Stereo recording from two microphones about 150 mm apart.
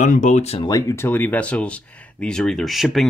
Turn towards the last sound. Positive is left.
turn(degrees=0)  # may be behind; listen again after turning